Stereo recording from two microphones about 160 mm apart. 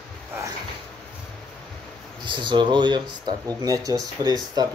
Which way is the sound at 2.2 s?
30° right (ahead or behind).